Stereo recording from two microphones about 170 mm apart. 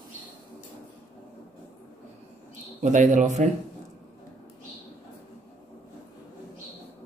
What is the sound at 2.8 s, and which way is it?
Speech, 45° right (ahead or behind).